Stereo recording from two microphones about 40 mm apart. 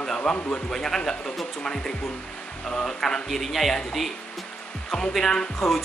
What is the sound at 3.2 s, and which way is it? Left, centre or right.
Speech, centre.